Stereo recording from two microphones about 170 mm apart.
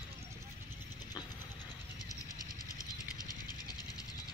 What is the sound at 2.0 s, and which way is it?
Vehicle, 20° left (ahead or behind).